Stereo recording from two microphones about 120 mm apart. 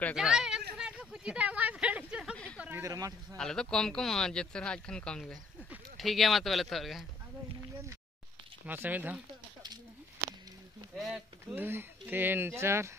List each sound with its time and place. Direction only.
0.1 s a sound: 5° right (ahead or behind)
2.3 s a sound: 10° left (ahead or behind)
2.8 s speech: 25° right (ahead or behind)
3.3 s speech: 5° left (ahead or behind)
8.6 s speech: 15° right (ahead or behind)
11.0 s speech: 5° right (ahead or behind)
11.5 s speech: 15° right (ahead or behind)